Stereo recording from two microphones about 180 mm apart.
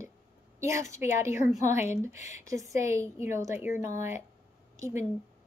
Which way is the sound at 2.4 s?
20° right (ahead or behind).